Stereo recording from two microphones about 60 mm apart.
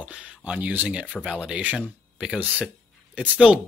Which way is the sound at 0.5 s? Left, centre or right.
Right.